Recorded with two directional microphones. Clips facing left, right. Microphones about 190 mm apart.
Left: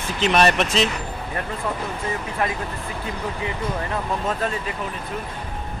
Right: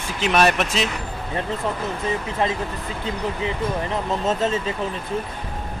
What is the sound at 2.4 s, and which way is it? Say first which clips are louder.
Speech: right 1 dB; 25° right (ahead or behind).